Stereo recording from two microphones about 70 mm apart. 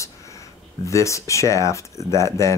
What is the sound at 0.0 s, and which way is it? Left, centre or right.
Speech, left.